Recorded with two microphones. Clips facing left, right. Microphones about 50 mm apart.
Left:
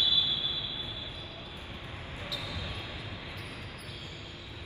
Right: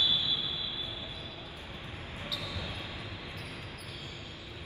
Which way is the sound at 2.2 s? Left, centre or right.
Left.